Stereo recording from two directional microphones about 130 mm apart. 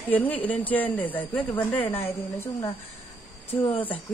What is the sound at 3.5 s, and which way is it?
Speech, 15° left (ahead or behind).